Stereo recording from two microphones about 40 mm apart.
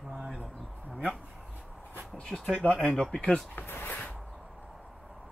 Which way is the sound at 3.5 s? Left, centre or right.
Left.